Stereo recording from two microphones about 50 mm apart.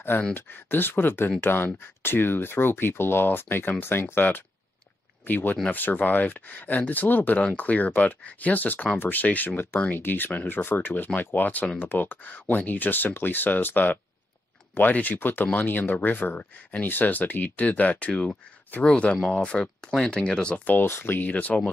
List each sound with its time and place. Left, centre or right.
0.3 s speech: left; by 20.5 s centre
20.5 s speech: left
20.8 s speech: left
21.3 s speech: left